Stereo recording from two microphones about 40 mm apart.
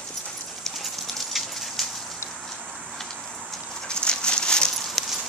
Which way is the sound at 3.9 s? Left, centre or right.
Left.